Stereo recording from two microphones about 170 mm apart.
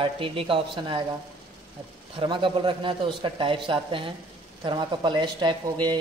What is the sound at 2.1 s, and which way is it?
A man's voice, 30° right (ahead or behind).